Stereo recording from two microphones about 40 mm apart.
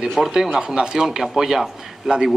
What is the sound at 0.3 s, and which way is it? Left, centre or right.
A man's voice, centre.